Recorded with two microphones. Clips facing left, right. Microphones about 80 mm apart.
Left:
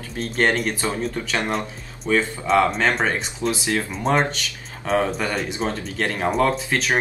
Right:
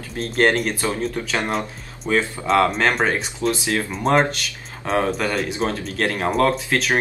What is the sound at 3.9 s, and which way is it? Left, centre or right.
Speech, centre.